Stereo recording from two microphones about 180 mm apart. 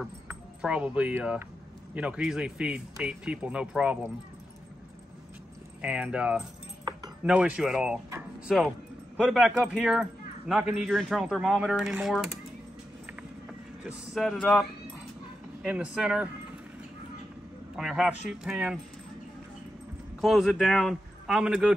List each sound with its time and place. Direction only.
0.3 s speech: 5° right (ahead or behind)
5.8 s speech: 5° right (ahead or behind)
6.8 s keys jangling: 25° right (ahead or behind)
7.2 s speech: 5° right (ahead or behind)
13.8 s speech: centre (ahead or behind)
17.7 s speech: centre (ahead or behind)
20.2 s speech: centre (ahead or behind)